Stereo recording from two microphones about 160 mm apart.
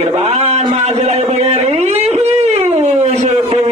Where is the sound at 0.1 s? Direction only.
40° right (ahead or behind).